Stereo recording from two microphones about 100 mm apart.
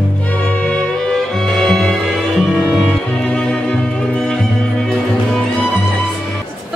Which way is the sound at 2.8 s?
10° left (ahead or behind).